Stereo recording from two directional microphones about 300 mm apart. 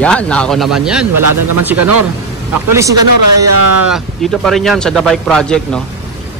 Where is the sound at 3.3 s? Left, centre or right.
Right.